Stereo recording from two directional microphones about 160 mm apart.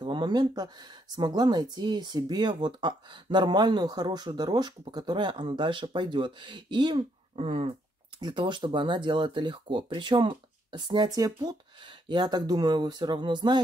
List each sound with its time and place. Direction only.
0.0 s speech: 30° right (ahead or behind)